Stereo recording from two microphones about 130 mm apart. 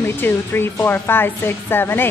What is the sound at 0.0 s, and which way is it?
A woman's voice, 15° left (ahead or behind).